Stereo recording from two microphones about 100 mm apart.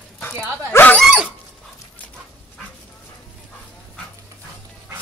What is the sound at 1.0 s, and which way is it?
Dog, 5° right (ahead or behind).